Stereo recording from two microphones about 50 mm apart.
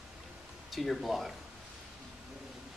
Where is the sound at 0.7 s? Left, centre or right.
Centre.